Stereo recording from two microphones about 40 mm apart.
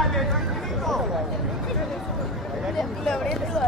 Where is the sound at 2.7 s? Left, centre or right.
Centre.